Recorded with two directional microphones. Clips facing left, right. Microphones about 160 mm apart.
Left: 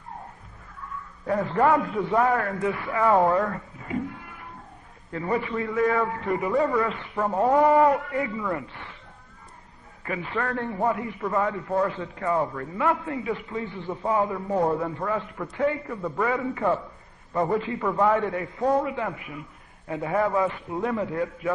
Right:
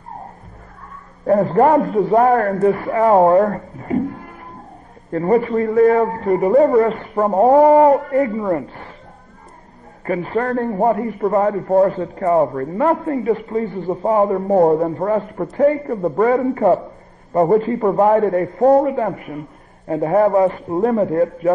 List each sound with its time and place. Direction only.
0.8 s a man's voice: 45° right (ahead or behind)
10.0 s a man's voice: 40° right (ahead or behind)